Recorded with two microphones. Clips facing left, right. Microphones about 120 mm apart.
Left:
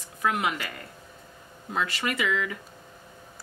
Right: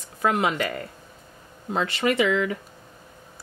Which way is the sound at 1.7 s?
30° right (ahead or behind).